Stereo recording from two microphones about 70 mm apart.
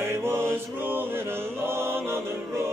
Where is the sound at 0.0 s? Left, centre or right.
Right.